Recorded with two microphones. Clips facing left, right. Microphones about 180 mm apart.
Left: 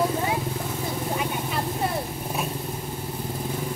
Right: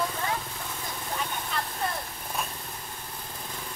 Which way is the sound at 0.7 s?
25° left (ahead or behind).